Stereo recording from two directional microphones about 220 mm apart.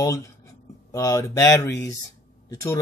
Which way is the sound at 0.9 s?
15° left (ahead or behind).